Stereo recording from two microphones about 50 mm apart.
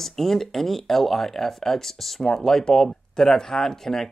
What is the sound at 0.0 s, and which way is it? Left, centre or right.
Speech, centre.